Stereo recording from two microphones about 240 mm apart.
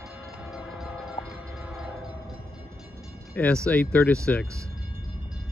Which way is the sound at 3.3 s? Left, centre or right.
Centre.